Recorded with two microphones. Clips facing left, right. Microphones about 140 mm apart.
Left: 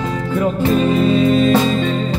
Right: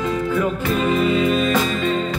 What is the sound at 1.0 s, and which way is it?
Music, 35° left (ahead or behind).